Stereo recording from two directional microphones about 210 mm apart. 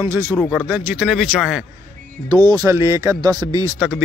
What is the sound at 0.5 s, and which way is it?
Speech, 5° right (ahead or behind).